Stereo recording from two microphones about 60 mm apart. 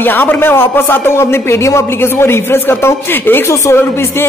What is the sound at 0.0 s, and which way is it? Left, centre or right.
Speech, left.